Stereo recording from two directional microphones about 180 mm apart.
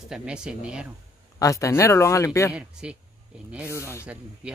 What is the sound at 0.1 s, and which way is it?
Speech, 5° right (ahead or behind).